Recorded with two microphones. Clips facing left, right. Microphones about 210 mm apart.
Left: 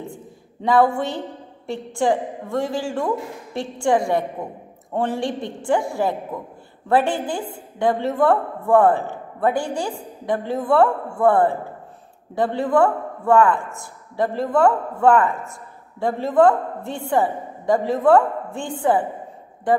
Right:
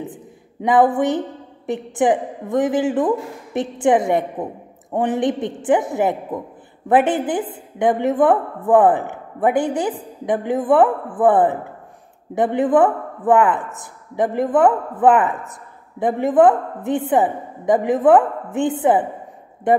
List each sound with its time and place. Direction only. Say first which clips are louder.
0.0 s a woman's voice: right 3 dB; 20° right (ahead or behind)